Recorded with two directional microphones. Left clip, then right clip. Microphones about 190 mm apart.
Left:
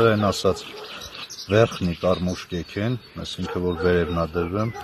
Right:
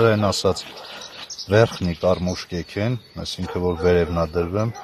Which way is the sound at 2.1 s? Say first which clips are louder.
Right 2 dB; 45° right (ahead or behind).